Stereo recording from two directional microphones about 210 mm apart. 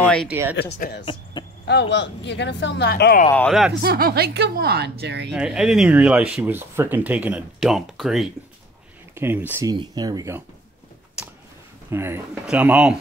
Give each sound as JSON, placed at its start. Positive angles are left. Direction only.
{"t": 0.0, "sound": "a sound", "side_deg": 5}
{"t": 0.3, "sound": "speech", "side_deg": -10}
{"t": 0.6, "sound": "speech", "side_deg": 50}
{"t": 3.3, "sound": "speech", "side_deg": 5}
{"t": 3.8, "sound": "a woman's voice", "side_deg": -50}
{"t": 5.3, "sound": "speech", "side_deg": -5}
{"t": 11.9, "sound": "speech", "side_deg": -10}